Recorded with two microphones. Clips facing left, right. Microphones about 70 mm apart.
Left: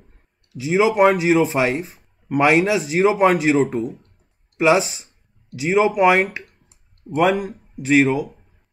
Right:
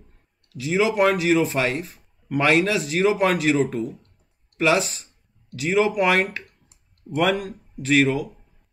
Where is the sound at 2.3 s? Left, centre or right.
Centre.